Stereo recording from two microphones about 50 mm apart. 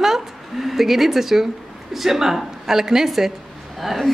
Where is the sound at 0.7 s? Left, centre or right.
Centre.